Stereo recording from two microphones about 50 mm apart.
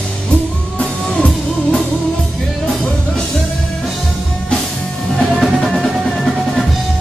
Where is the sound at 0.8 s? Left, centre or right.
Centre.